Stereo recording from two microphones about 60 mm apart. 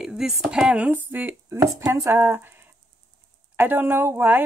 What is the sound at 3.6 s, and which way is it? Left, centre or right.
Speech, right.